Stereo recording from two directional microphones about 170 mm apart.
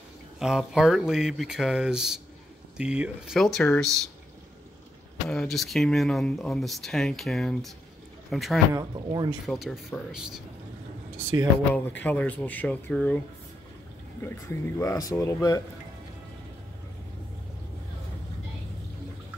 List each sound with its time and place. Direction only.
0.4 s speech: 5° right (ahead or behind)
5.3 s speech: 5° left (ahead or behind)
8.7 s speech: 25° right (ahead or behind)
9.5 s speech: centre (ahead or behind)
12.0 s speech: 10° left (ahead or behind)
14.2 s speech: 15° left (ahead or behind)